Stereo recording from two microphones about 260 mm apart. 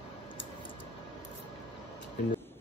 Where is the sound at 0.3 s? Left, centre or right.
Centre.